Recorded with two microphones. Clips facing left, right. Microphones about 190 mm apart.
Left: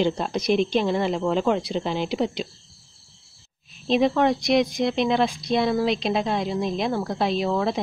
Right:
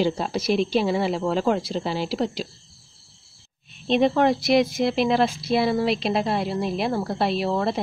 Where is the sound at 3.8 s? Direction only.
Centre (ahead or behind).